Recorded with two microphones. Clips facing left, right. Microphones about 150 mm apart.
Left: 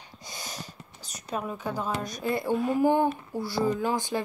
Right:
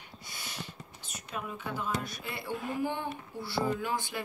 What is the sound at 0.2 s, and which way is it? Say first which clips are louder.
Speech: left 4 dB; 40° left (ahead or behind).